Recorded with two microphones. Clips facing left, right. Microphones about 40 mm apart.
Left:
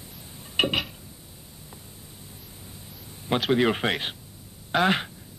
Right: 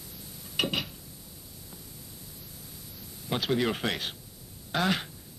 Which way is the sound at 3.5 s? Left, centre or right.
Left.